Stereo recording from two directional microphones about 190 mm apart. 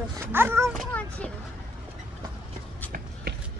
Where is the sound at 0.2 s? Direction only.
10° right (ahead or behind).